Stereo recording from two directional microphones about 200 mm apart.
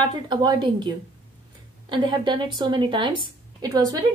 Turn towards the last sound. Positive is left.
turn(degrees=-20)  # may be behind; listen again after turning